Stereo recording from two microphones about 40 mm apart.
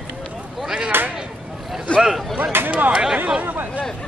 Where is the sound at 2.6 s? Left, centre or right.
Right.